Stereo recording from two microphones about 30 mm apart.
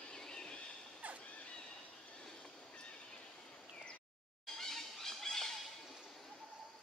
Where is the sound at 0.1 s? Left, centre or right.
Left.